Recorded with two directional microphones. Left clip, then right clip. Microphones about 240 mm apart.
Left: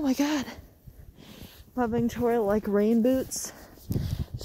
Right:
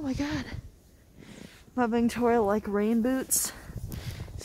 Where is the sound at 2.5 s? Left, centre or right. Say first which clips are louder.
Left 3 dB; centre.